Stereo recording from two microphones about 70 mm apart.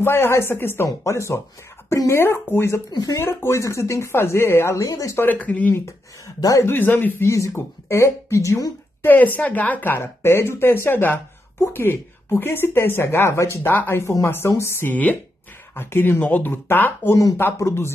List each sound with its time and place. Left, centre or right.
0.0 s speech: left
2.9 s speech: left
3.2 s speech: left
4.8 s speech: left
5.1 s a woman's voice: left
5.7 s speech: left
6.7 s a woman's voice: left
7.2 s speech: left
9.0 s a woman's voice: left
9.9 s a woman's voice: left
17.1 s speech: left
17.6 s speech: left